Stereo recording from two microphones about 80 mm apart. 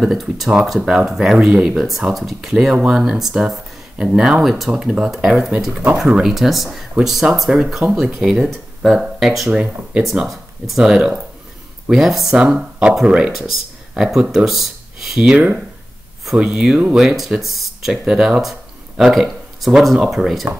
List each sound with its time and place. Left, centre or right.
0.0 s speech: centre
17.0 s speech: centre